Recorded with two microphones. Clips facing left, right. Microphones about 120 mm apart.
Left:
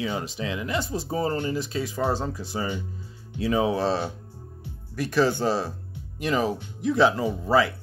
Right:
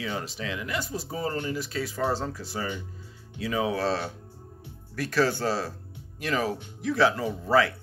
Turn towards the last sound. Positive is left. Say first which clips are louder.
# left 2 dB
turn(degrees=15)  # may be behind; listen again after turning